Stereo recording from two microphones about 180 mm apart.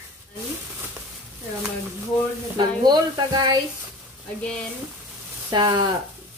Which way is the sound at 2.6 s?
25° right (ahead or behind).